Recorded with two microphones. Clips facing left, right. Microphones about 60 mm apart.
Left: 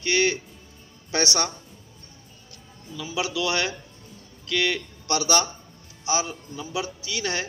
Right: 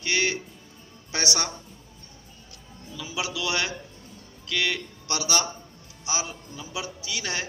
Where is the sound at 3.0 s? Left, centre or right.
Centre.